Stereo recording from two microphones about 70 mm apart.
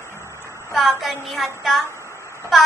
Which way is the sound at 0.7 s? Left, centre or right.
Centre.